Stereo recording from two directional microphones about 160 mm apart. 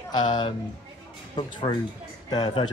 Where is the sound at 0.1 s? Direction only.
25° left (ahead or behind).